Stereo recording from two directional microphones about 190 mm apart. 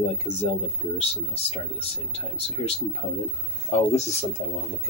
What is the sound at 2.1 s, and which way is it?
Speech, 30° left (ahead or behind).